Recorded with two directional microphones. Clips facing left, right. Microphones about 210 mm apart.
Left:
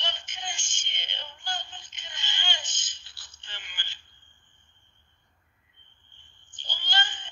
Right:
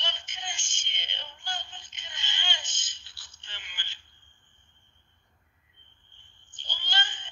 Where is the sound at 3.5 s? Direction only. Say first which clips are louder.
Left 2 dB; 40° left (ahead or behind).